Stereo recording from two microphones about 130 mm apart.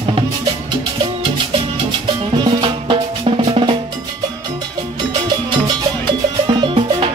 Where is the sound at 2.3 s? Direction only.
35° right (ahead or behind).